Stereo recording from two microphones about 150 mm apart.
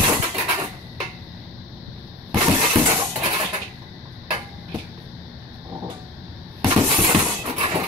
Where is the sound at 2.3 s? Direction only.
25° right (ahead or behind).